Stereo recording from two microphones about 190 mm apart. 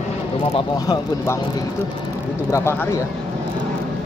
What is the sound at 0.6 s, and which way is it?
Speech, 20° left (ahead or behind).